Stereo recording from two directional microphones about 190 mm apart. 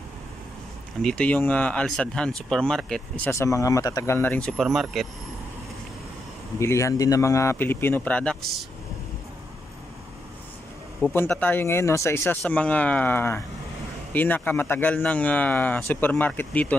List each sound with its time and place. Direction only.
1.0 s speech: 5° left (ahead or behind)
3.3 s speech: 15° left (ahead or behind); by 5.0 s centre (ahead or behind)
6.6 s speech: 15° left (ahead or behind)
11.1 s speech: 10° left (ahead or behind)